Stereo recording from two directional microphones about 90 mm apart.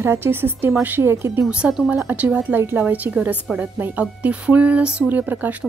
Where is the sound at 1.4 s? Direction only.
10° right (ahead or behind).